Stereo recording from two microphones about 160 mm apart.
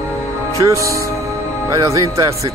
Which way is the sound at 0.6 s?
20° right (ahead or behind).